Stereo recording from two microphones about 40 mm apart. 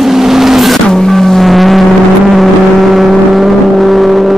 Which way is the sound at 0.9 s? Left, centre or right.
Centre.